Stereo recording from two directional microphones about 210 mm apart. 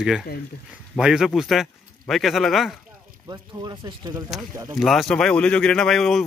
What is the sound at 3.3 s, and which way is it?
Speech, 20° right (ahead or behind).